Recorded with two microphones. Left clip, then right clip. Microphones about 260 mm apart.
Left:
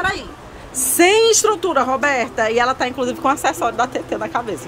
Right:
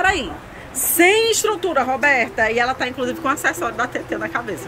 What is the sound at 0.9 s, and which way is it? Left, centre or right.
A woman's voice, centre.